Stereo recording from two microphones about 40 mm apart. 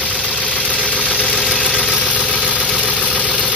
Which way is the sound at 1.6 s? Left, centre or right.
Centre.